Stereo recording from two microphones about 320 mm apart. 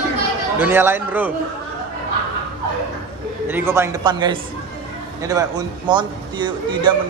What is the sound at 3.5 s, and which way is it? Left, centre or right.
A man's voice, centre.